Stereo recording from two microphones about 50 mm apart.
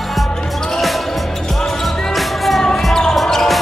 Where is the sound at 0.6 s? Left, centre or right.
Centre.